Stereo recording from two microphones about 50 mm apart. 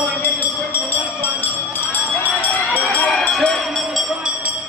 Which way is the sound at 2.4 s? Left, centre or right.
Left.